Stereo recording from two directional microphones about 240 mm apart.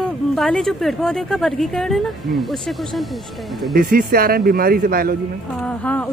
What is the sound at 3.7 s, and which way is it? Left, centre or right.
Speech, right.